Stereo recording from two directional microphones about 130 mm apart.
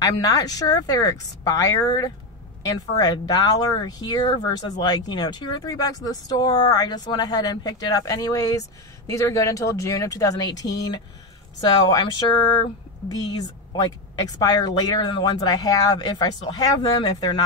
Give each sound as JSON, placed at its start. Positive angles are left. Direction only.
{"t": 0.2, "sound": "speech", "side_deg": 30}